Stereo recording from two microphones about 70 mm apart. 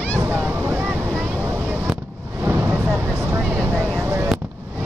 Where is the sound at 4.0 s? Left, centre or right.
Right.